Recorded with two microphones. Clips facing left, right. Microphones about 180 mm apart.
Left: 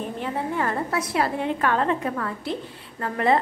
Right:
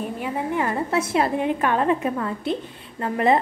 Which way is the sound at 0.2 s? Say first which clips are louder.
Right 1 dB; 10° right (ahead or behind).